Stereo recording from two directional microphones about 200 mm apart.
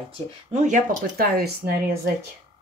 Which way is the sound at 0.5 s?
35° right (ahead or behind).